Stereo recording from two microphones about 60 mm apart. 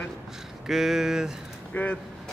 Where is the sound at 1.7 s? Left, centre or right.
Left.